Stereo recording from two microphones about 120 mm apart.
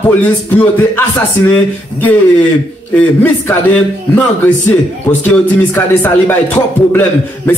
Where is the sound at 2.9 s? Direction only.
10° left (ahead or behind).